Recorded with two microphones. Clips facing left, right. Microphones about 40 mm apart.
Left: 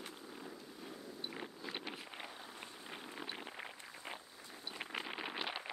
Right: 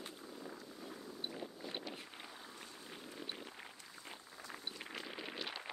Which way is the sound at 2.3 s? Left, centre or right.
Centre.